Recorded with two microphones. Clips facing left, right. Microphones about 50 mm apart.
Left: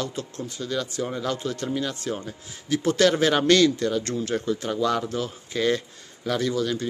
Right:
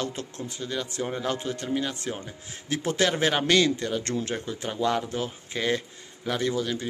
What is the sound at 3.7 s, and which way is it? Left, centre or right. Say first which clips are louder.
Speech: left 3 dB; right.